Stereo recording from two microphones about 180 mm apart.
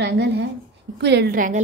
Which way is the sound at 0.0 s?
70° right (ahead or behind).